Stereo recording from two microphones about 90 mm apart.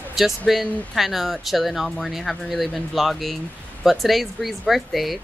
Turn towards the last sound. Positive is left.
turn(degrees=0)  # may be behind; listen again after turning